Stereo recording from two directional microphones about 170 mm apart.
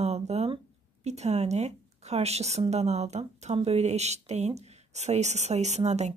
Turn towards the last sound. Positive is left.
turn(degrees=-40)  # may be behind; listen again after turning